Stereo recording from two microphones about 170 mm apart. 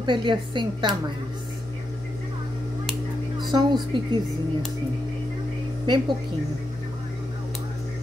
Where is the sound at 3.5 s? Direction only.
25° right (ahead or behind).